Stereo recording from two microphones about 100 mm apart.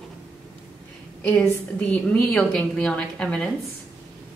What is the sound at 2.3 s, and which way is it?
A woman's voice, 10° left (ahead or behind).